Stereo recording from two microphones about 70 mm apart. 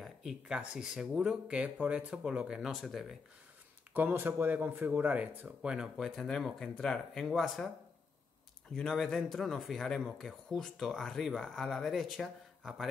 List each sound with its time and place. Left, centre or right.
0.0 s speech: centre
3.9 s speech: right; by 5.9 s centre
5.9 s speech: centre
8.7 s speech: centre